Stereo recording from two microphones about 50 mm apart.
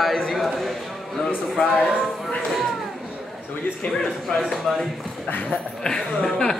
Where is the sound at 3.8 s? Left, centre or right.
Left.